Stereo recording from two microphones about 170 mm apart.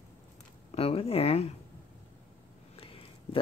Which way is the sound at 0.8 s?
35° left (ahead or behind).